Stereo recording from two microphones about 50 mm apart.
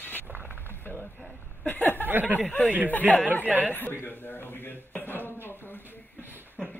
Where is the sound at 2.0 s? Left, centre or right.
Right.